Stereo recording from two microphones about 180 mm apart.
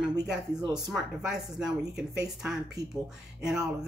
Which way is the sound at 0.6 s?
20° right (ahead or behind).